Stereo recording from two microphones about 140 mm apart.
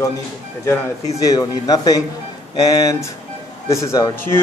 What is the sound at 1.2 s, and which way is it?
Speech, 25° left (ahead or behind).